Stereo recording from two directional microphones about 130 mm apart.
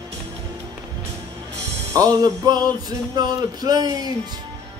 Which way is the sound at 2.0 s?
30° right (ahead or behind).